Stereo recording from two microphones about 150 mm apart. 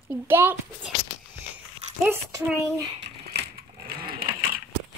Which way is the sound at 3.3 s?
90° right.